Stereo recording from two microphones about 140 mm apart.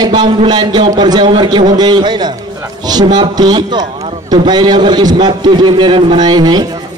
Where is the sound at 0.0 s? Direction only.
30° right (ahead or behind).